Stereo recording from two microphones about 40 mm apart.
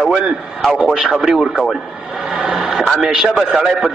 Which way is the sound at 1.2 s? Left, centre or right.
Centre.